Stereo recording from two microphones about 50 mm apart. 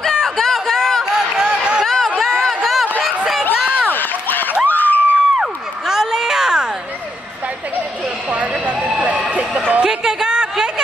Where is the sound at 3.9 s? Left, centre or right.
Left.